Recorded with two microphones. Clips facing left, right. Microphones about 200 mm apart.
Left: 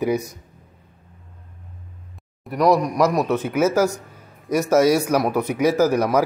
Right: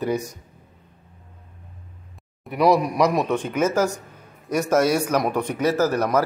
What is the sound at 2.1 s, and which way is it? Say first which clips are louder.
A man's voice: left 1 dB; centre (ahead or behind).